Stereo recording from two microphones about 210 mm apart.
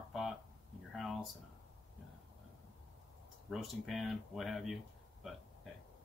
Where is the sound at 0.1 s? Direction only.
Centre (ahead or behind).